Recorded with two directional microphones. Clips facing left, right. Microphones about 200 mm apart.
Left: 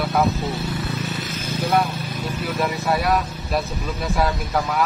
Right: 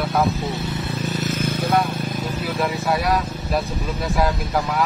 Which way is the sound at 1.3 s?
55° right (ahead or behind).